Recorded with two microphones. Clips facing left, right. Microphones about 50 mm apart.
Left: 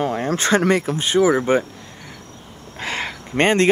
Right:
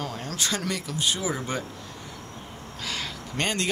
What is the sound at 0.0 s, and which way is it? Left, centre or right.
Speech, left.